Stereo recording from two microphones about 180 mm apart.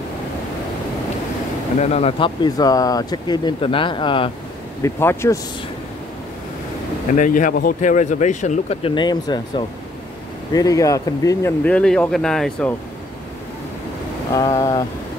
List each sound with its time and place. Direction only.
1.8 s speech: 35° left (ahead or behind)
4.8 s speech: 15° left (ahead or behind)
7.2 s speech: 45° left (ahead or behind); by 11.5 s 20° left (ahead or behind)
11.6 s speech: 5° left (ahead or behind)
14.3 s speech: 20° left (ahead or behind)